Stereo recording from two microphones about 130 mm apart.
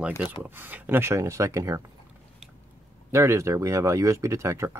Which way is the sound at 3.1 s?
25° right (ahead or behind).